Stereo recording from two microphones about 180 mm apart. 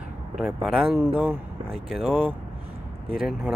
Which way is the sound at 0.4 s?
Centre (ahead or behind).